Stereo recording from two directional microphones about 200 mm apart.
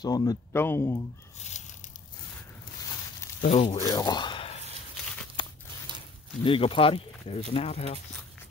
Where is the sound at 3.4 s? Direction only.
30° left (ahead or behind).